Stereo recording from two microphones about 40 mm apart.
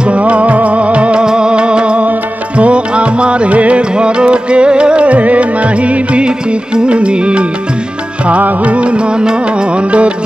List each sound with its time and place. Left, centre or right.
0.0 s music: right
1.2 s music: right
8.3 s music: right
8.7 s music: right